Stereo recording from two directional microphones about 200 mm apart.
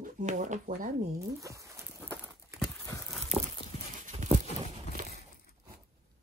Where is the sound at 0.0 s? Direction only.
35° right (ahead or behind).